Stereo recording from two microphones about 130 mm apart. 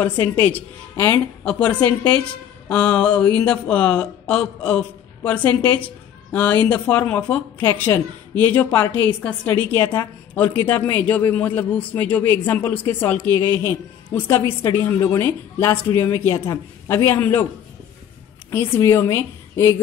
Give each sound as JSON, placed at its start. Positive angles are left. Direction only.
{"t": 0.0, "sound": "speech", "side_deg": 15}
{"t": 18.5, "sound": "speech", "side_deg": 20}